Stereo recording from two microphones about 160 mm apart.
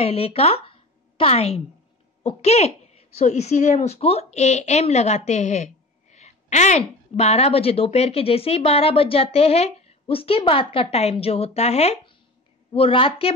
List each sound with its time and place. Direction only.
0.0 s a woman's voice: 40° left (ahead or behind)